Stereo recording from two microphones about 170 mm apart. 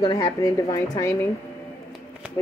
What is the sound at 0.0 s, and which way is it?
Speech, 25° left (ahead or behind).